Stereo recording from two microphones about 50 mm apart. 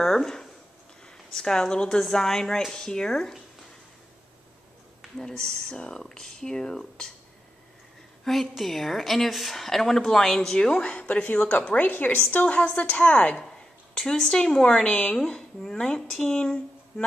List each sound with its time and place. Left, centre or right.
0.0 s speech: centre
5.1 s speech: centre
8.2 s a woman's voice: centre
10.8 s a woman's voice: left
11.9 s a woman's voice: left
13.9 s speech: centre
15.2 s speech: centre